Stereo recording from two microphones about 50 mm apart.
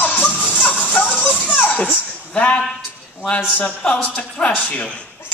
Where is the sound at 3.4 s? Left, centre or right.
Left.